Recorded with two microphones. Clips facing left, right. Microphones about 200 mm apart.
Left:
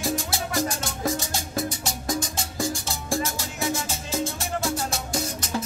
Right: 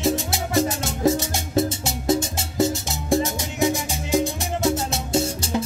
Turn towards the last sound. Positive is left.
turn(degrees=-30)  # may be behind; listen again after turning